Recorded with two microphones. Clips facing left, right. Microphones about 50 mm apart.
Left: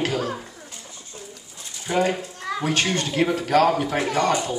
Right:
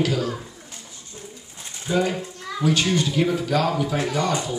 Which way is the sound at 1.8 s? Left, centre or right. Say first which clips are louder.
Left 1 dB; left.